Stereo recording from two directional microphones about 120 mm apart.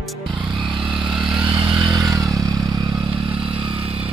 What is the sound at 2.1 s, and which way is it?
Motorcycle, 30° right (ahead or behind).